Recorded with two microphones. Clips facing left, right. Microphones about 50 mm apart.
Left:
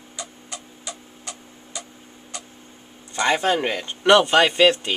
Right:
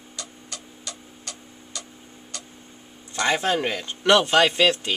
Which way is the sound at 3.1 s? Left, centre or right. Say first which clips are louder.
Left 2 dB; centre.